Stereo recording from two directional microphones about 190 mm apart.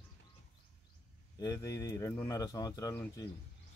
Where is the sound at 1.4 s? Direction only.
15° left (ahead or behind).